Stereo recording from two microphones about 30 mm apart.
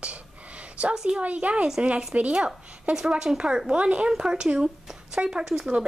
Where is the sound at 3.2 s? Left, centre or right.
Right.